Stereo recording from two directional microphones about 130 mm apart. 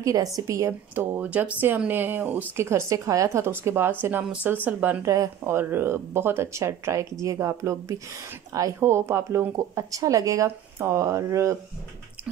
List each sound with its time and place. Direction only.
0.0 s speech: 25° right (ahead or behind); by 5.0 s 10° right (ahead or behind)
5.0 s speech: 25° right (ahead or behind)